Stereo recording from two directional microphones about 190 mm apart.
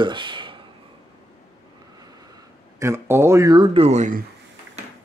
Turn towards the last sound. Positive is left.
turn(degrees=-40)  # may be behind; listen again after turning